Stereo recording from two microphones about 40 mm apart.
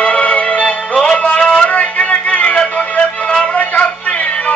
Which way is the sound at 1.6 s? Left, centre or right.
Left.